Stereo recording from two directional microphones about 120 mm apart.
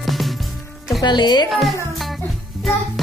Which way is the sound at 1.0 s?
35° left (ahead or behind).